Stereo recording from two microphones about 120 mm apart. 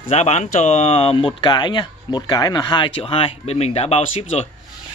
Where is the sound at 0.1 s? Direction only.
70° left (ahead or behind).